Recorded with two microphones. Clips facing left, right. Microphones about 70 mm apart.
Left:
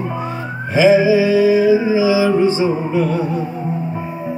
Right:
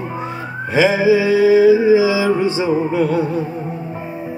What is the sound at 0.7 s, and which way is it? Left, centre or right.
Mantra, right.